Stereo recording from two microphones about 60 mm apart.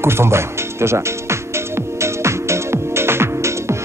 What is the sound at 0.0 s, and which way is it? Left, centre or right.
Speech, right.